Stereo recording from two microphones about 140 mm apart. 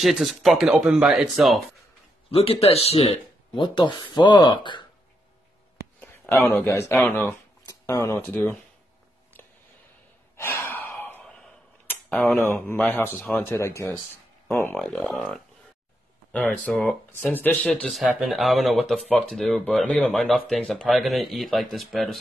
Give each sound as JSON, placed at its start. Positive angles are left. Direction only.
{"t": 0.0, "sound": "speech", "side_deg": 0}
{"t": 2.3, "sound": "speech", "side_deg": 45}
{"t": 5.9, "sound": "a sound", "side_deg": 15}
{"t": 6.6, "sound": "speech", "side_deg": 15}
{"t": 10.3, "sound": "gasp", "side_deg": 15}
{"t": 11.9, "sound": "tick-tock", "side_deg": 10}
{"t": 12.6, "sound": "speech", "side_deg": 10}
{"t": 14.8, "sound": "speech", "side_deg": 0}
{"t": 17.8, "sound": "speech", "side_deg": 0}